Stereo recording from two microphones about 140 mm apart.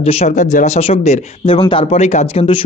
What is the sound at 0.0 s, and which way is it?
Speech, 55° left (ahead or behind).